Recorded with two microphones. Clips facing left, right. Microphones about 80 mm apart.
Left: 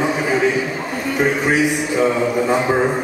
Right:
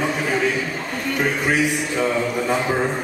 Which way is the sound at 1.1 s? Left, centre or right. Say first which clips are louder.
Left 4 dB; centre.